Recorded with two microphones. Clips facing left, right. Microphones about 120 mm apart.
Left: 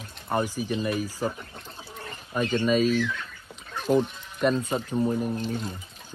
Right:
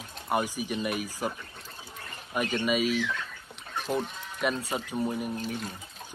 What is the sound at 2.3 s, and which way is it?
Speech, 10° right (ahead or behind).